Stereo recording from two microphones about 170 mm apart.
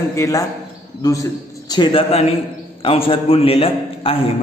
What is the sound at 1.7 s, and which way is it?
A man's voice, 30° left (ahead or behind).